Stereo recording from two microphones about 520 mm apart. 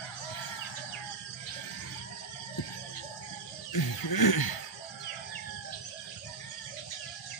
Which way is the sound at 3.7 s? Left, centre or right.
Left.